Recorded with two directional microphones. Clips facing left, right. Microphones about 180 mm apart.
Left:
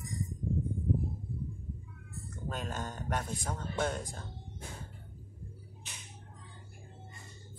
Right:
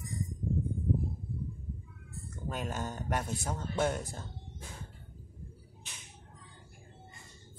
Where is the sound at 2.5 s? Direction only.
10° right (ahead or behind).